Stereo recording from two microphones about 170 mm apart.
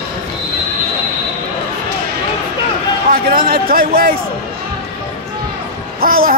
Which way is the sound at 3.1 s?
60° right (ahead or behind).